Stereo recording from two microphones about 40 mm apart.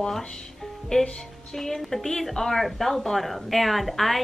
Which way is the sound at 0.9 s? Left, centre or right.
Left.